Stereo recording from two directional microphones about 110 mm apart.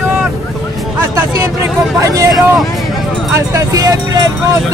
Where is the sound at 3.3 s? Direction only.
30° right (ahead or behind).